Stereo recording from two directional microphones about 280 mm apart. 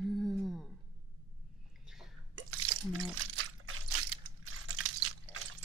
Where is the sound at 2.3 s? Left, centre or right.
Right.